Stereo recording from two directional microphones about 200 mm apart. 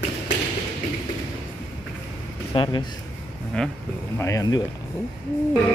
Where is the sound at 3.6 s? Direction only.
5° left (ahead or behind).